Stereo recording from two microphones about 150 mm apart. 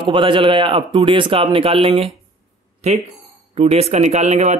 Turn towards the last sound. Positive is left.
turn(degrees=-50)  # may be behind; listen again after turning